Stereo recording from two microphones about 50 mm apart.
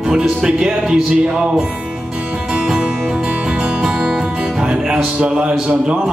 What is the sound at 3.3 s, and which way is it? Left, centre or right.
Music, right.